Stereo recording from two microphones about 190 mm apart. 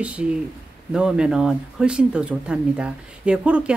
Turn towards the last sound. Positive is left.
turn(degrees=-5)  # may be behind; listen again after turning